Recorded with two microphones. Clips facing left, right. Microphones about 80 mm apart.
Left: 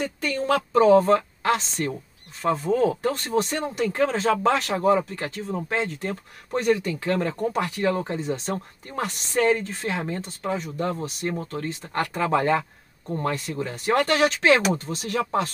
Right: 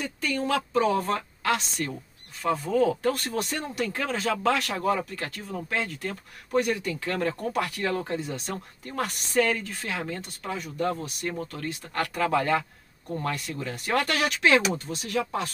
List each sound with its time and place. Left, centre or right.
0.0 s speech: left
14.4 s speech: left